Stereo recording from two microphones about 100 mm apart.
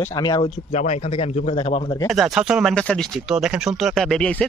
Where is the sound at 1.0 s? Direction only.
85° left; by 1.9 s 60° left (ahead or behind).